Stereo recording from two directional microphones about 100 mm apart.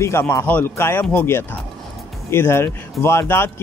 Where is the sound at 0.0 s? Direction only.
25° left (ahead or behind).